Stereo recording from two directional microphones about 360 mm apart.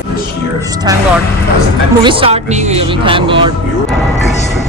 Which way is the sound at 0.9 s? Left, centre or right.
Centre.